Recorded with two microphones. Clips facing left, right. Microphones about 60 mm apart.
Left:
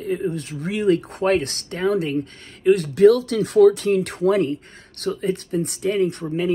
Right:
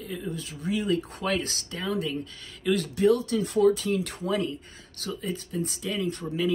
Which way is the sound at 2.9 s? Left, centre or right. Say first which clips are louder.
Left 7 dB; left.